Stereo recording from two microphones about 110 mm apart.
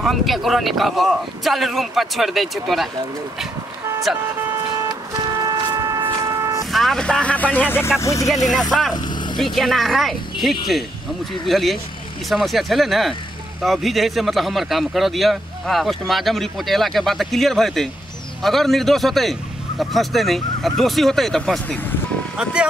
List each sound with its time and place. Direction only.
0.0 s speech: centre (ahead or behind)
4.4 s vehicle: 20° right (ahead or behind)
5.2 s a sound: 30° right (ahead or behind)
6.6 s speech: centre (ahead or behind); by 7.9 s 20° left (ahead or behind)
8.0 s speech: 30° left (ahead or behind)
8.5 s speech: centre (ahead or behind)
22.4 s speech: 10° right (ahead or behind)